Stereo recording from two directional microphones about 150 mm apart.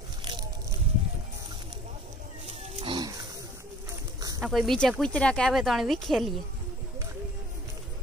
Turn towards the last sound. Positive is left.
turn(degrees=0)  # may be behind; listen again after turning